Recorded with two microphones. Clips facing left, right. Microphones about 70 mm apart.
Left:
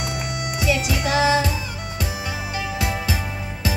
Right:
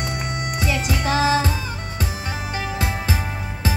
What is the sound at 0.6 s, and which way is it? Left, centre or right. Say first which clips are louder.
Music: left 2 dB; right.